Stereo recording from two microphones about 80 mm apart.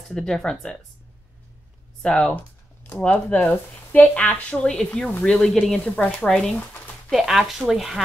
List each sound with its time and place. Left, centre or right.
0.1 s speech: centre
2.0 s speech: centre
5.9 s speech: centre
6.2 s speech: centre
7.1 s a woman's voice: centre